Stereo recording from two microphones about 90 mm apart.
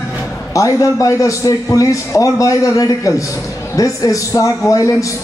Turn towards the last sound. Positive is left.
turn(degrees=40)  # may be behind; listen again after turning